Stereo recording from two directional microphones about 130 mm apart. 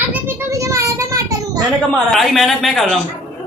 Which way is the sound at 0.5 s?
25° right (ahead or behind).